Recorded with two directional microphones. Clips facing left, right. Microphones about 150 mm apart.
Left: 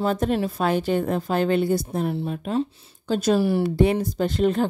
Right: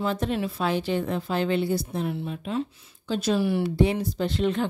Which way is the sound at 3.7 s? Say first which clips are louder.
Left 3 dB; 55° left (ahead or behind).